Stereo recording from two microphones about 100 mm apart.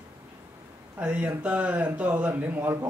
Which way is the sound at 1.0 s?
15° right (ahead or behind).